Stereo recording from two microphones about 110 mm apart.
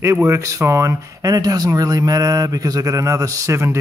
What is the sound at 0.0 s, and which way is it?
Speech, 25° right (ahead or behind).